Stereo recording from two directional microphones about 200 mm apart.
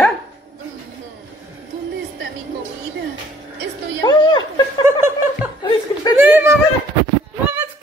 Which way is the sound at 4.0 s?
20° left (ahead or behind).